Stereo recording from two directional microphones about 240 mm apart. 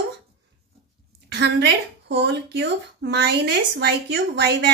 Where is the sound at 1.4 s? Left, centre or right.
Right.